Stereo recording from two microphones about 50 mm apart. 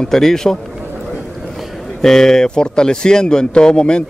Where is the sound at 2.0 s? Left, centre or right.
Centre.